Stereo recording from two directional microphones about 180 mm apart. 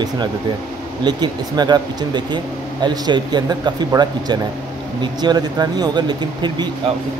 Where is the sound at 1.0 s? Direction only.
25° right (ahead or behind).